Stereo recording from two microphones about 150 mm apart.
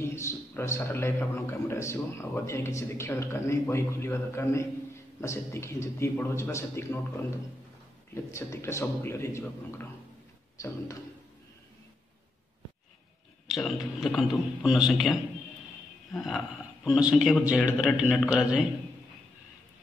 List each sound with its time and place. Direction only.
0.0 s a man's voice: 15° left (ahead or behind)
13.5 s a man's voice: centre (ahead or behind)